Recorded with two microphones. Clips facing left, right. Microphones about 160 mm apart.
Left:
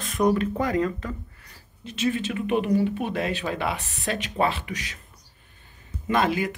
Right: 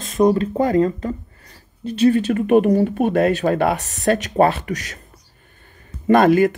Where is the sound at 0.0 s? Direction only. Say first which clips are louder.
Right 6 dB; 25° right (ahead or behind); by 5.0 s 45° right (ahead or behind).